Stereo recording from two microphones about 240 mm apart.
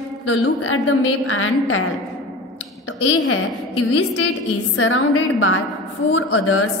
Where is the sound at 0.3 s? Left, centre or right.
Left.